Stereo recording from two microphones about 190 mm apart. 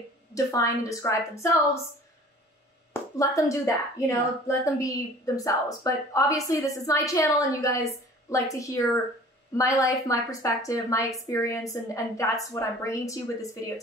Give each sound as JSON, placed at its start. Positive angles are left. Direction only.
{"t": 0.3, "sound": "speech", "side_deg": 15}
{"t": 2.9, "sound": "speech", "side_deg": 15}